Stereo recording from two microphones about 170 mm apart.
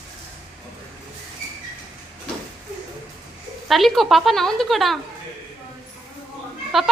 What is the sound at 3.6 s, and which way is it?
A woman's voice, centre (ahead or behind).